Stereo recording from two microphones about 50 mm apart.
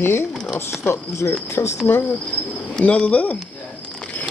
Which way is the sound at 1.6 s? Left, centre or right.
Left.